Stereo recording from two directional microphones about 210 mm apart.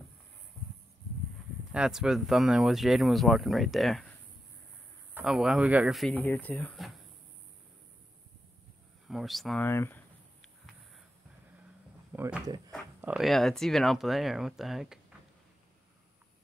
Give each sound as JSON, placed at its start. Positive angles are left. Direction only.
{"t": 1.7, "sound": "speech", "side_deg": -5}
{"t": 5.1, "sound": "speech", "side_deg": -5}
{"t": 9.0, "sound": "speech", "side_deg": 0}
{"t": 12.1, "sound": "speech", "side_deg": -5}
{"t": 12.4, "sound": "a sound", "side_deg": -20}
{"t": 13.1, "sound": "speech", "side_deg": 0}